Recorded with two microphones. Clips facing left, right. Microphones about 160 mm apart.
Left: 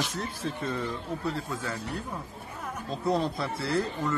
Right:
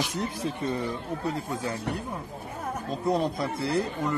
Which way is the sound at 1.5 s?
25° right (ahead or behind).